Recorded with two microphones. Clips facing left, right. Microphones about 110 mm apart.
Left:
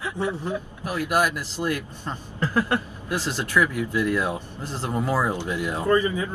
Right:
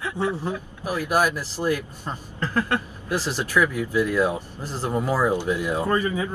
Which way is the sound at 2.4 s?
15° left (ahead or behind).